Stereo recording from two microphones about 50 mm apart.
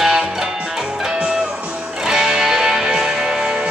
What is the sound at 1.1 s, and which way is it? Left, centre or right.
Music, centre.